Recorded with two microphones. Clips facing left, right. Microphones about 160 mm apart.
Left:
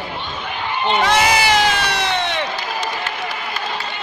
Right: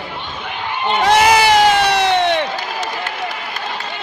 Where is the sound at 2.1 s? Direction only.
55° right (ahead or behind).